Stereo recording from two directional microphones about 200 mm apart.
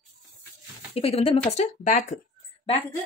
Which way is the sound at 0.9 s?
30° left (ahead or behind).